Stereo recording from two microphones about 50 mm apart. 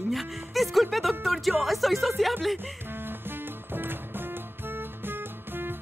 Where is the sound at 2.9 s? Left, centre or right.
Right.